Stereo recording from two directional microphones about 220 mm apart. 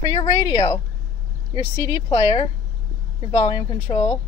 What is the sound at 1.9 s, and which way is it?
Speech, 20° left (ahead or behind).